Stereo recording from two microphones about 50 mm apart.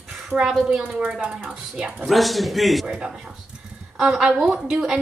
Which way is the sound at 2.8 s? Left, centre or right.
Centre.